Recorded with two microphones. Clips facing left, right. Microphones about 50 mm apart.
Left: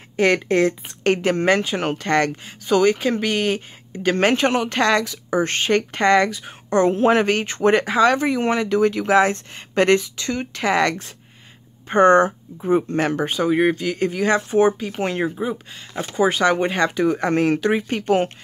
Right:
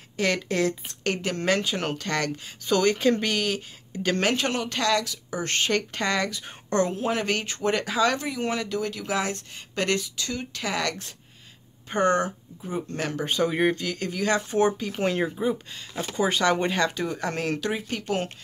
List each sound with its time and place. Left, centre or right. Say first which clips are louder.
0.1 s speech: left 8 dB; left; by 3.3 s centre
3.3 s speech: left 5 dB; left
7.0 s speech: left 10 dB; left
7.2 s speech: left 8 dB; left
12.9 s speech: left 7 dB; left; by 13.8 s centre
13.8 s speech: left 6 dB; left
15.0 s speech: left 3 dB; centre
17.6 s speech: left 9 dB; left